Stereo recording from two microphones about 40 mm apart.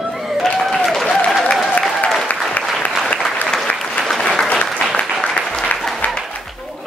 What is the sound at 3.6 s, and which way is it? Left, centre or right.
Applause, left.